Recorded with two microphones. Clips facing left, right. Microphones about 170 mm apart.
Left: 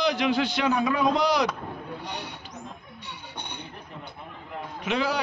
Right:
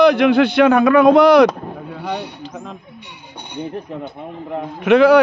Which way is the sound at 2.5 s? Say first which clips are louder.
Right 9 dB; 90° right.